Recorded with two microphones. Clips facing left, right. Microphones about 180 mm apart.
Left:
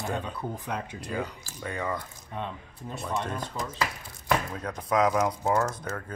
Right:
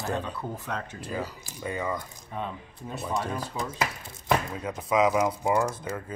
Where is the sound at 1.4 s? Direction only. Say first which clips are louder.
Right 1 dB; 5° right (ahead or behind).